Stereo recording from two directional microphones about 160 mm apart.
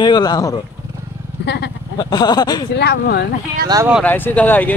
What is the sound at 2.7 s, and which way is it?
Speech, 90° left.